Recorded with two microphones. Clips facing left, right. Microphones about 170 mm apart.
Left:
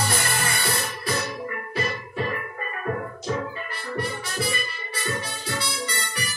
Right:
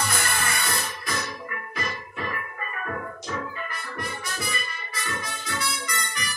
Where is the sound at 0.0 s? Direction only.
30° left (ahead or behind).